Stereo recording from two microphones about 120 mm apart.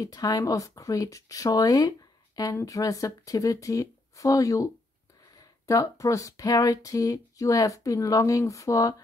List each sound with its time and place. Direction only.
0.0 s speech: 30° left (ahead or behind)
5.7 s speech: 25° left (ahead or behind)